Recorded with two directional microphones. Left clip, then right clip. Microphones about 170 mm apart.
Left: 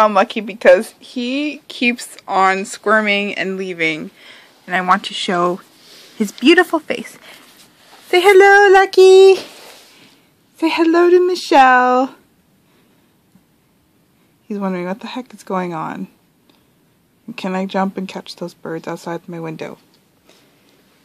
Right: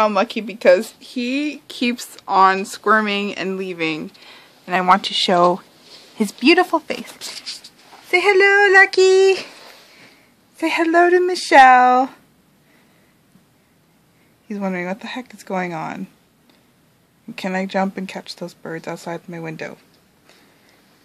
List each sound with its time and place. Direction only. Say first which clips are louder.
0.0 s speech: left 4 dB; centre (ahead or behind)
8.1 s speech: left 5 dB; 20° left (ahead or behind)
10.6 s speech: left 2 dB; 15° left (ahead or behind)
14.5 s speech: left 2 dB; 10° left (ahead or behind)
17.4 s speech: left 1 dB; 10° left (ahead or behind)